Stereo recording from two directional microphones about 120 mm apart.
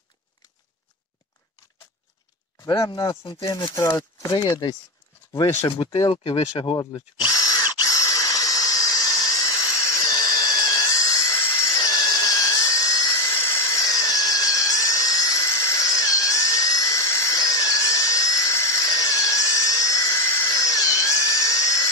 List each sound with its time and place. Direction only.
2.6 s speech: 30° left (ahead or behind)
4.3 s speech: 35° left (ahead or behind)
5.9 s speech: 50° left (ahead or behind)
6.8 s drill: 35° left (ahead or behind)